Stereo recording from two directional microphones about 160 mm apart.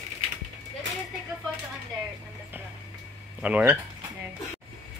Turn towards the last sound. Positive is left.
turn(degrees=-10)  # may be behind; listen again after turning